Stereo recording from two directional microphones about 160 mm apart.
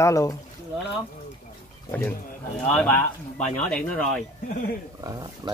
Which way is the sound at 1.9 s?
15° left (ahead or behind).